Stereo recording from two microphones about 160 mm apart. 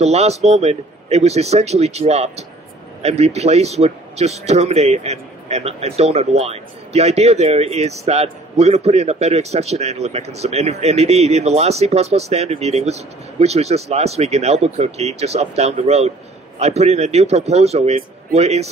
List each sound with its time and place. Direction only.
0.0 s a man's voice: 40° right (ahead or behind)